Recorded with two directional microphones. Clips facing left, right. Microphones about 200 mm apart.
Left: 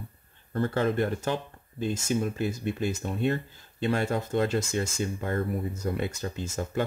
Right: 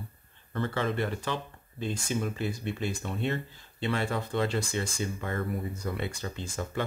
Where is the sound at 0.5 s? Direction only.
45° left (ahead or behind).